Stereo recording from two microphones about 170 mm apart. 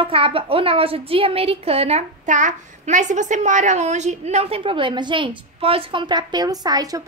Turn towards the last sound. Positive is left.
turn(degrees=-20)  # may be behind; listen again after turning